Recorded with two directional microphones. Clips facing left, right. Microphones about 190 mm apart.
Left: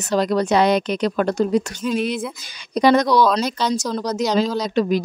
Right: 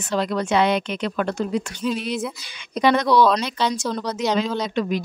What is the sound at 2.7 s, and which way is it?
Speech, 40° left (ahead or behind).